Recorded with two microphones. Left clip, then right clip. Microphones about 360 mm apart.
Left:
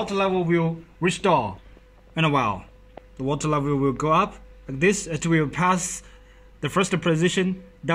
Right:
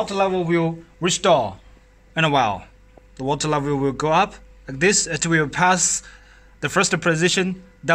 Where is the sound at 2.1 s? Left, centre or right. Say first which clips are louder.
Right 4 dB; right.